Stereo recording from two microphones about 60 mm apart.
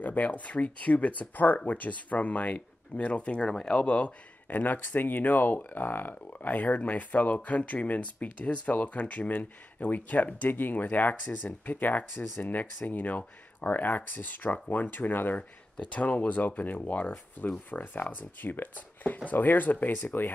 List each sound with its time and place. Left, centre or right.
0.0 s speech: left
3.4 s speech: centre
3.7 s speech: left